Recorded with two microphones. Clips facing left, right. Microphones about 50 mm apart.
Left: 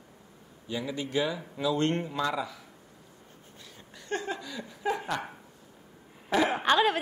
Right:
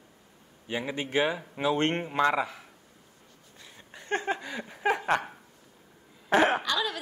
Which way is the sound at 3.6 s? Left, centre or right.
Right.